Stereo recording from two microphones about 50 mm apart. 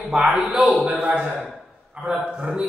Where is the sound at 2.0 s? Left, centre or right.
Centre.